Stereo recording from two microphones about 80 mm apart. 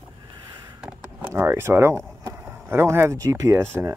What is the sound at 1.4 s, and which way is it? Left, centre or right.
Speech, right.